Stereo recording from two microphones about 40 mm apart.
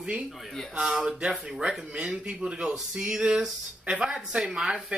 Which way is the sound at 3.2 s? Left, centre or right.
Right.